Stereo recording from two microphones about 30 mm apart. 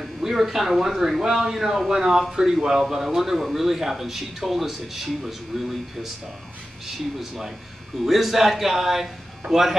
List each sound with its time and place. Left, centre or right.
0.0 s a man's voice: centre
3.2 s a man's voice: centre
7.2 s a man's voice: centre